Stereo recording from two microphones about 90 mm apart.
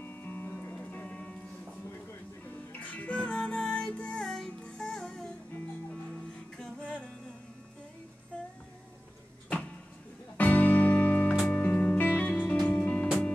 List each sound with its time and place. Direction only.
0.0 s music: 20° left (ahead or behind)
2.7 s music: 20° left (ahead or behind)
6.8 s music: 10° left (ahead or behind)
10.3 s music: 15° left (ahead or behind)